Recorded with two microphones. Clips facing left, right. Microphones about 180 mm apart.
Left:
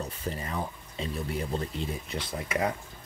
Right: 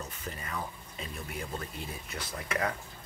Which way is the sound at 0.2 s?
30° left (ahead or behind).